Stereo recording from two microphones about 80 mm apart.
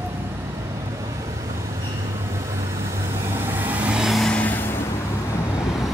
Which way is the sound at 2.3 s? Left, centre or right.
Right.